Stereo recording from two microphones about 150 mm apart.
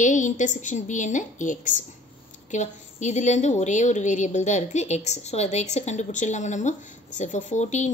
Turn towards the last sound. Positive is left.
turn(degrees=50)  # may be behind; listen again after turning